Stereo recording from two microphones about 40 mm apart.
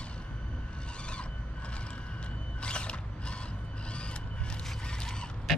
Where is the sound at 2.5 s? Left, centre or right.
Left.